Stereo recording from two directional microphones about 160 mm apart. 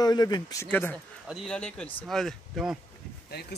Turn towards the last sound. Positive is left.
turn(degrees=90)